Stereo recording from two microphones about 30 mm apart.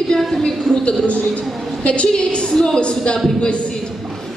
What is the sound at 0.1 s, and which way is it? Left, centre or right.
Speech, centre.